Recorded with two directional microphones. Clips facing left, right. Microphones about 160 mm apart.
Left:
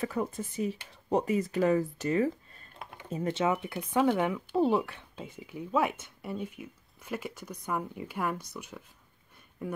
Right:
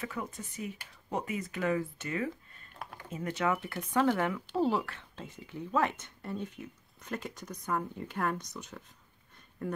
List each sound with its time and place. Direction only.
0.0 s speech: 35° left (ahead or behind)
3.3 s speech: 20° left (ahead or behind)